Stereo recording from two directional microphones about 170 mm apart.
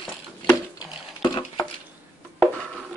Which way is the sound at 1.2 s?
25° left (ahead or behind).